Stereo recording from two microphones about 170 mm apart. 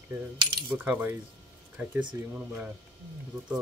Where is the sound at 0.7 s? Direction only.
10° right (ahead or behind).